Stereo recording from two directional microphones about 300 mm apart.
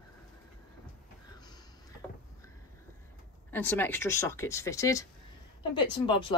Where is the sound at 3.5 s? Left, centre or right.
Centre.